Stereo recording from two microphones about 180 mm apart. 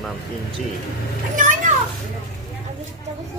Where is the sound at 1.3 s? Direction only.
45° right (ahead or behind).